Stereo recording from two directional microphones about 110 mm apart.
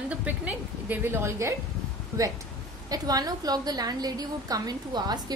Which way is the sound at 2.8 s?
35° right (ahead or behind).